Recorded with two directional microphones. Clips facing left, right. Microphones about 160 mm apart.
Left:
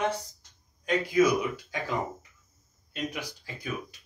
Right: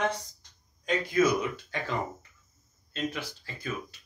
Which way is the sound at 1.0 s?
10° left (ahead or behind).